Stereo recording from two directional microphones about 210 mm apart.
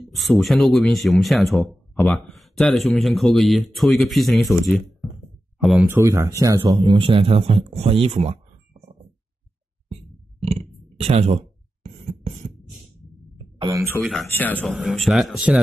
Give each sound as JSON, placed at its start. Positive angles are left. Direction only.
{"t": 0.1, "sound": "speech", "side_deg": 0}
{"t": 11.0, "sound": "a sound", "side_deg": -30}
{"t": 13.6, "sound": "speech", "side_deg": -15}
{"t": 13.8, "sound": "speech", "side_deg": 5}